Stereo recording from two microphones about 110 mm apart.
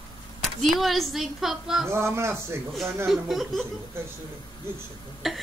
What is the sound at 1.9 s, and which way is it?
Speech, 25° right (ahead or behind).